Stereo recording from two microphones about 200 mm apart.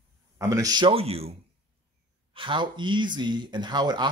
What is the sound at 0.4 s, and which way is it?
Speech, 15° right (ahead or behind).